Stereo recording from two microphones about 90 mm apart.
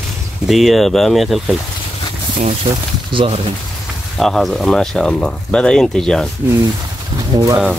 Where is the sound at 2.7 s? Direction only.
60° right (ahead or behind).